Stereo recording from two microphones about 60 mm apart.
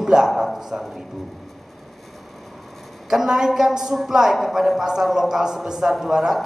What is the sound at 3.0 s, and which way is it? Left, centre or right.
A woman's voice, centre.